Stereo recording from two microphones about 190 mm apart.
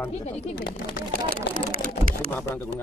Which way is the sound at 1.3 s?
50° right (ahead or behind).